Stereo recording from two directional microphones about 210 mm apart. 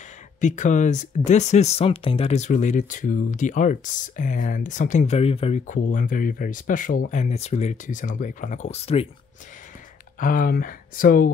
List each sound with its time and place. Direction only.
0.4 s speech: 35° left (ahead or behind)
10.2 s speech: 40° left (ahead or behind)